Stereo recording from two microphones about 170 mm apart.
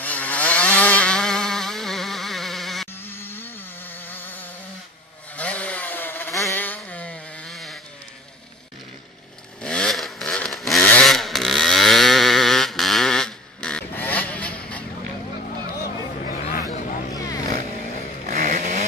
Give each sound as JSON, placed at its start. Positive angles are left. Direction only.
{"t": 0.0, "sound": "vehicle", "side_deg": 10}
{"t": 2.9, "sound": "insect", "side_deg": 15}
{"t": 5.3, "sound": "chainsaw", "side_deg": 10}
{"t": 9.6, "sound": "vehicle", "side_deg": 5}
{"t": 10.8, "sound": "chainsaw", "side_deg": 5}
{"t": 16.3, "sound": "a sound", "side_deg": 50}
{"t": 16.7, "sound": "vehicle", "side_deg": 50}
{"t": 18.2, "sound": "chainsaw", "side_deg": -50}